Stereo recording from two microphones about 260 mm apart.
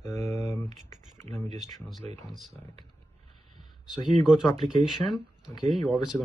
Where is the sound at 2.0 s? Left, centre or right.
Right.